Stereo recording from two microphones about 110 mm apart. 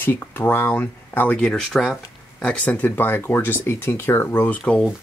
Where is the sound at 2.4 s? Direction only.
10° left (ahead or behind).